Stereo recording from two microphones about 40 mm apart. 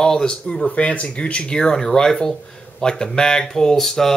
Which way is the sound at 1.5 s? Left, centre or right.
Centre.